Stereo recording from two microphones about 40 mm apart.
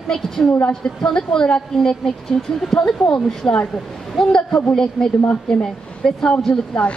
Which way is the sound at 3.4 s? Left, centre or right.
Left.